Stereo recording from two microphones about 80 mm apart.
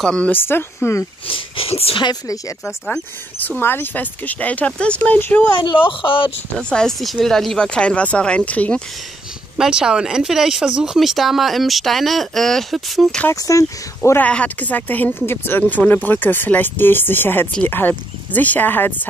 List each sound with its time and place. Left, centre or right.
0.0 s speech: centre
0.3 s speech: left
3.3 s speech: left
5.6 s speech: left
6.7 s speech: centre
9.6 s speech: centre
13.3 s speech: left
14.1 s speech: centre